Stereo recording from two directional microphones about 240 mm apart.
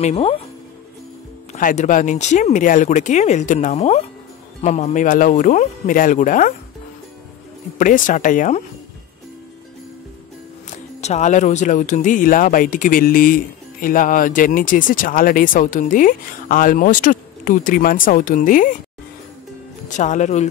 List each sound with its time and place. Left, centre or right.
0.0 s speech: left
1.5 s speech: left
7.8 s speech: left
11.0 s speech: left
19.9 s speech: left